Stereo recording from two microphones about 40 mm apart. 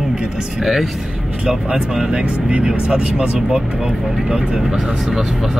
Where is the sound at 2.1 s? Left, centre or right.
Right.